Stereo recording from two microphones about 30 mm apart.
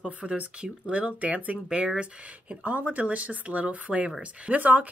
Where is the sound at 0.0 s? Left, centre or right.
Right.